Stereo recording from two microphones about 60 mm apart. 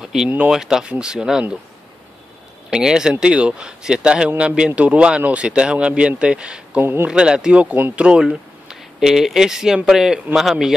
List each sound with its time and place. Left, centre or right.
0.0 s speech: centre
2.7 s speech: centre
6.8 s speech: right
7.1 s speech: centre